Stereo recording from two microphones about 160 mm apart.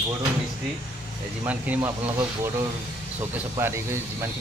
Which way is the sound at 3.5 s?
15° right (ahead or behind).